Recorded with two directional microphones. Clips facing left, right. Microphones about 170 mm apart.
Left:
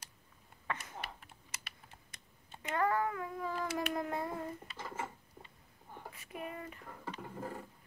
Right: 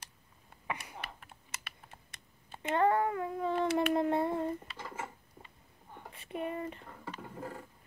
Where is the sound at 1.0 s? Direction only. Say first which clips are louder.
Right 1 dB; 55° right (ahead or behind).